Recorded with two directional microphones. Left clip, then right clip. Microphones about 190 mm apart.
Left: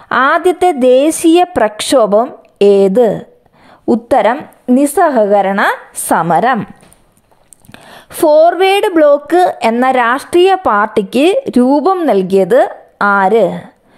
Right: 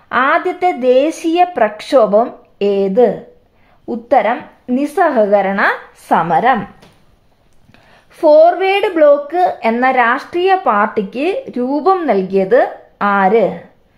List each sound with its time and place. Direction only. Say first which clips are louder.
0.1 s a woman's voice: left 3 dB; 45° left (ahead or behind)
6.1 s a woman's voice: left 1 dB; 50° left (ahead or behind)
7.7 s a woman's voice: left 13 dB; 45° left (ahead or behind)